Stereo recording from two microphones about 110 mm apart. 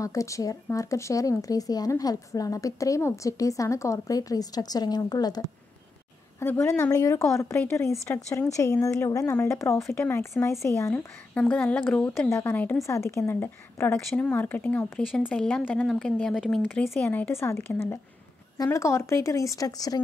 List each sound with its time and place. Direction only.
0.0 s a woman's voice: 30° left (ahead or behind)
6.4 s a woman's voice: 20° left (ahead or behind)
12.8 s a woman's voice: 25° left (ahead or behind)